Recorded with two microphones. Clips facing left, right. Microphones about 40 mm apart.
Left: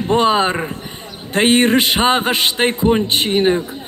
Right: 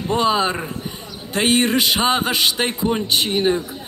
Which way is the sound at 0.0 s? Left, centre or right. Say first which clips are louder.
Left 4 dB; left.